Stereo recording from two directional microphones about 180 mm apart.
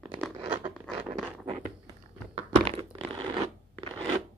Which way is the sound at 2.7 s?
30° right (ahead or behind).